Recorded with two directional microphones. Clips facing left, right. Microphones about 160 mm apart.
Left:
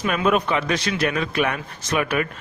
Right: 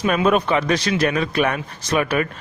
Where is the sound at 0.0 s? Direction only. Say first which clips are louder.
Right 3 dB; 35° right (ahead or behind).